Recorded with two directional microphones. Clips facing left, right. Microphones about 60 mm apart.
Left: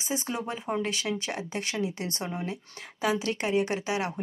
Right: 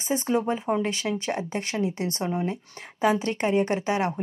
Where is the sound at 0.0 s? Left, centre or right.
Right.